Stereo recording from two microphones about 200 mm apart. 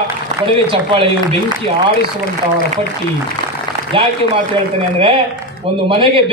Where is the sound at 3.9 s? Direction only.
25° right (ahead or behind).